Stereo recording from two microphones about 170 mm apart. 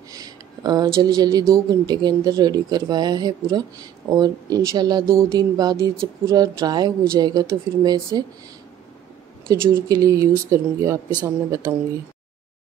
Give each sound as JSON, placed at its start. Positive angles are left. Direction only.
{"t": 0.1, "sound": "speech", "side_deg": -20}
{"t": 9.5, "sound": "speech", "side_deg": -20}